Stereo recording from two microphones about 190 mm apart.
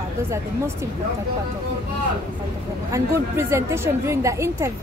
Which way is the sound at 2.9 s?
15° right (ahead or behind).